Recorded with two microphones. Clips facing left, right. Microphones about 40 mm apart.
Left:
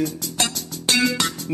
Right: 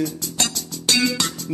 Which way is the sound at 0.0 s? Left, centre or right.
Left.